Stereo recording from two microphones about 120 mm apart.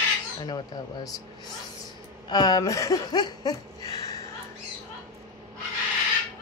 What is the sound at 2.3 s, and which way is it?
Speech, 35° left (ahead or behind).